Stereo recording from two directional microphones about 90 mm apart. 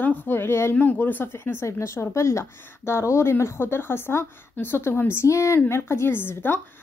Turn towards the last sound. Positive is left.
turn(degrees=25)  # may be behind; listen again after turning